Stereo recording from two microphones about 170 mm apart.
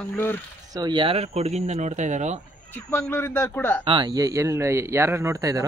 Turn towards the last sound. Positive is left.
turn(degrees=-20)  # may be behind; listen again after turning